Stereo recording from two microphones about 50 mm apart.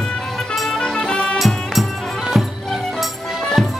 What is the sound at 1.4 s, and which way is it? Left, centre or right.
Music, centre.